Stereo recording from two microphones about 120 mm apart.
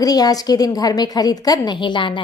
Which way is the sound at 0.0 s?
30° left (ahead or behind).